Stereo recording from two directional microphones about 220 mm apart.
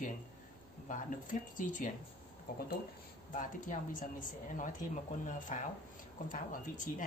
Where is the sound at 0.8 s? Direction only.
35° left (ahead or behind).